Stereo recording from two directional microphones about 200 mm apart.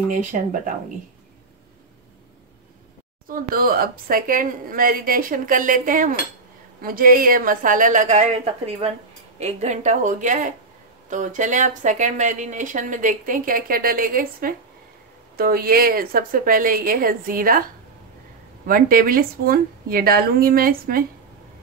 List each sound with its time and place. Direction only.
0.1 s speech: 40° right (ahead or behind)
3.3 s a woman's voice: 45° right (ahead or behind)
18.7 s a woman's voice: 45° right (ahead or behind)